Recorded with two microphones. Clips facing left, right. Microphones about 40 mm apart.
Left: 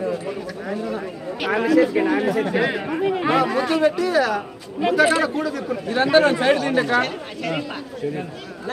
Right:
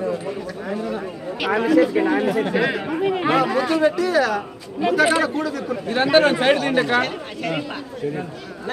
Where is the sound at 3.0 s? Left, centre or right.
Centre.